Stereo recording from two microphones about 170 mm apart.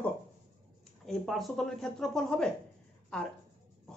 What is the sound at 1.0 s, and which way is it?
Speech, centre (ahead or behind).